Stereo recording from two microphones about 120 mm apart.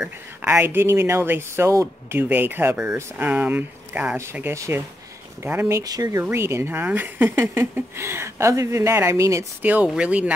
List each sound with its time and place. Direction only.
0.0 s speech: 15° right (ahead or behind)
9.6 s speech: 15° right (ahead or behind)